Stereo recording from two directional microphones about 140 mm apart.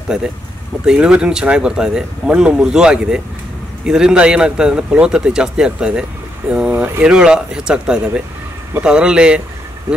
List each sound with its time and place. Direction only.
0.8 s speech: 5° right (ahead or behind)